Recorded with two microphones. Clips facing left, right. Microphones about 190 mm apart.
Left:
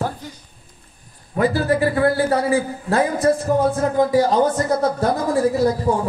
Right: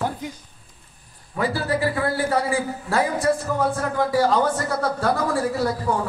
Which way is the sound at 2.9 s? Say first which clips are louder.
Left 4 dB; 20° left (ahead or behind).